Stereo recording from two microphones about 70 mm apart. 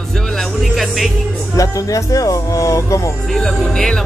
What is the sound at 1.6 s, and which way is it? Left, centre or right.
Speech, left.